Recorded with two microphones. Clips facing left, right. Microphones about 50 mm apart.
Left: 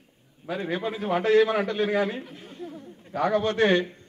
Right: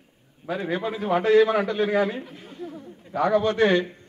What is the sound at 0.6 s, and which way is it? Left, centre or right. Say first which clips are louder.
Speech: right 1 dB; centre.